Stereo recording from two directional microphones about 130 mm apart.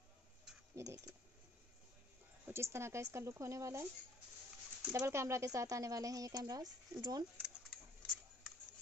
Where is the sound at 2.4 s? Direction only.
20° right (ahead or behind).